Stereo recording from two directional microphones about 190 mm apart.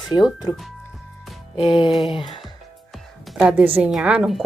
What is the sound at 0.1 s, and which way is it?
Music, 25° left (ahead or behind).